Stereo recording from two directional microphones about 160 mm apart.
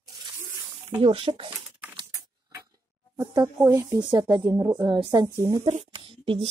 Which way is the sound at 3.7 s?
20° right (ahead or behind).